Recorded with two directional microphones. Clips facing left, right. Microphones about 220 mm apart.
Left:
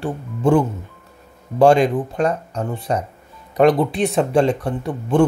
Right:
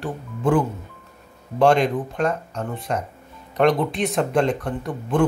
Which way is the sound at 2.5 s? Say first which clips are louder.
Left 4 dB; 35° left (ahead or behind).